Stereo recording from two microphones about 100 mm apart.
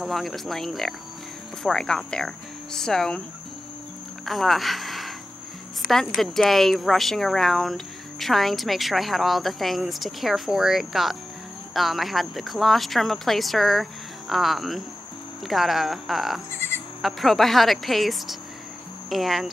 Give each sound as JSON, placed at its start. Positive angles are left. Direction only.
{"t": 0.0, "sound": "speech", "side_deg": 0}
{"t": 4.3, "sound": "speech", "side_deg": 0}
{"t": 16.5, "sound": "bleat", "side_deg": 25}
{"t": 17.0, "sound": "speech", "side_deg": 0}